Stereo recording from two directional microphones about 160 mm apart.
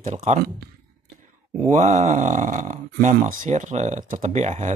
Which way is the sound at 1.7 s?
45° right (ahead or behind).